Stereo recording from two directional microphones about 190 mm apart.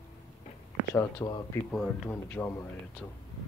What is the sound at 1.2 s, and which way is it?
Speech, 20° left (ahead or behind).